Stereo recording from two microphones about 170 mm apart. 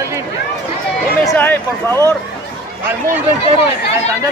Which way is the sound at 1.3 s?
10° left (ahead or behind).